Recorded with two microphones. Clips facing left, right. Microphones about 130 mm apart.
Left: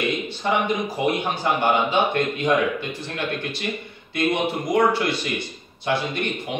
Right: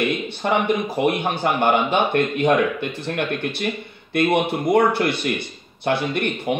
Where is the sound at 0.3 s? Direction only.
55° right (ahead or behind).